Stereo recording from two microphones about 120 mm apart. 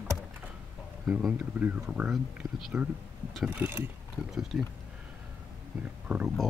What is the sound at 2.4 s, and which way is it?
Speech, 35° right (ahead or behind).